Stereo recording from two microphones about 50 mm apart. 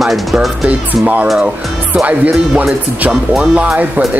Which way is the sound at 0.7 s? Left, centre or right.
Right.